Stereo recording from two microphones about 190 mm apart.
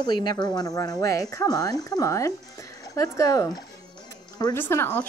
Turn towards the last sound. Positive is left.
turn(degrees=10)  # may be behind; listen again after turning